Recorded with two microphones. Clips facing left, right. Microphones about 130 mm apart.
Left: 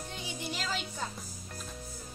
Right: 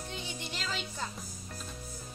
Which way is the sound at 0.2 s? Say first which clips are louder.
Left 2 dB; 10° left (ahead or behind).